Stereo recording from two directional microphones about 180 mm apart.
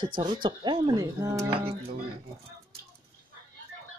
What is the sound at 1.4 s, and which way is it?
Speech, 30° right (ahead or behind).